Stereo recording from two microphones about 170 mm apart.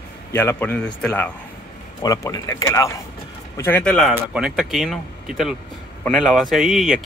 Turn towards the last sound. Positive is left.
turn(degrees=0)  # may be behind; listen again after turning